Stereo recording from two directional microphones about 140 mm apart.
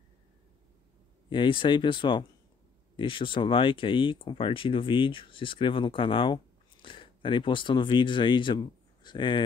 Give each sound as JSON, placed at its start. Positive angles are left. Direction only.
{"t": 1.3, "sound": "speech", "side_deg": 35}